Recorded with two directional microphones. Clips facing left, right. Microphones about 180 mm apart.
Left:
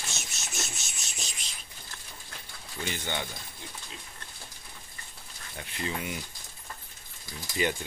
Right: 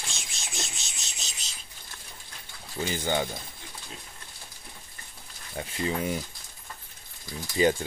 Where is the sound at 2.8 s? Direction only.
35° right (ahead or behind).